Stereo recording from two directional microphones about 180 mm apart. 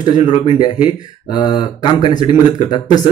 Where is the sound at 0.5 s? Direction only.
25° left (ahead or behind).